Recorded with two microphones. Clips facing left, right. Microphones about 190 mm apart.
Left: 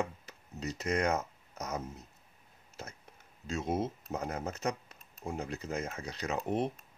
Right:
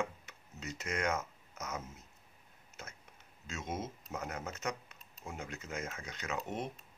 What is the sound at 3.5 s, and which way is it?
Speech, 35° left (ahead or behind).